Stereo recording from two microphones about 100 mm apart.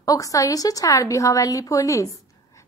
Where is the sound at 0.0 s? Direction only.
35° left (ahead or behind).